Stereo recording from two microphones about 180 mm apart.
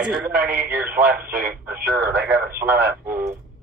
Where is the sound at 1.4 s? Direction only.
60° right (ahead or behind).